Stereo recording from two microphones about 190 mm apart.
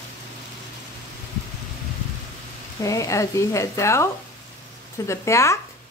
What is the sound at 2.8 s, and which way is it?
A woman's voice, 15° left (ahead or behind).